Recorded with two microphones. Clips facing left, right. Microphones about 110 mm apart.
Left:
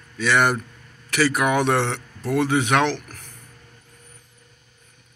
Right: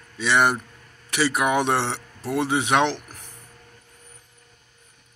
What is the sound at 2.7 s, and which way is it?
Speech, 25° right (ahead or behind).